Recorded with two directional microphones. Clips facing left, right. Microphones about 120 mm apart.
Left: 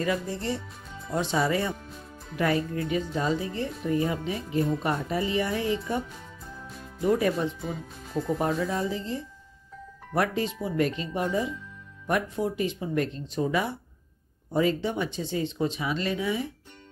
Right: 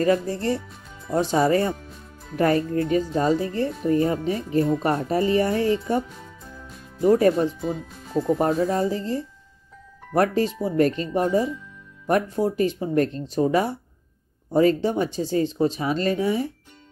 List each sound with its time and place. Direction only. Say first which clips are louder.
0.0 s speech: right 7 dB; 45° right (ahead or behind)
7.1 s speech: right 7 dB; 40° right (ahead or behind)
7.6 s speech: right 6 dB; centre (ahead or behind)
8.4 s speech: right 5 dB; 35° right (ahead or behind)